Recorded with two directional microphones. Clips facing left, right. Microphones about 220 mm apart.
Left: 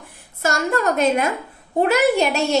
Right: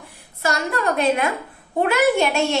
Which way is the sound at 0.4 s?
45° left (ahead or behind).